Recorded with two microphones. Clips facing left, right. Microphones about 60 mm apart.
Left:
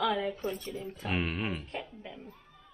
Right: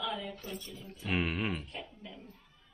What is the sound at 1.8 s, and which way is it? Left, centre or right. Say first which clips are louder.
Speech: left 3 dB; left.